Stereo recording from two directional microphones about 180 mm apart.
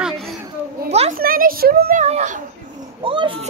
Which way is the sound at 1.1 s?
50° right (ahead or behind).